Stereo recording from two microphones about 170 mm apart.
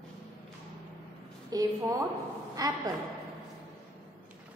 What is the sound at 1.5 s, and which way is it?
A woman's voice, 20° right (ahead or behind).